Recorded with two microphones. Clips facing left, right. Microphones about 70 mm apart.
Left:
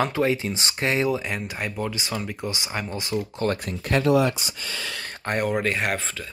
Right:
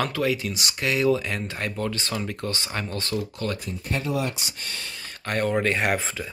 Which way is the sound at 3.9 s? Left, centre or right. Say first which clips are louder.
Left 8 dB; left.